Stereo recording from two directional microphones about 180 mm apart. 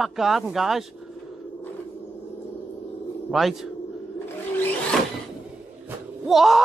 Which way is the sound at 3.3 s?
Centre (ahead or behind).